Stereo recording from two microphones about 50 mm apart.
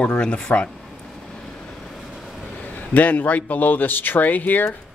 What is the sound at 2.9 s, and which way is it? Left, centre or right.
A man's voice, left.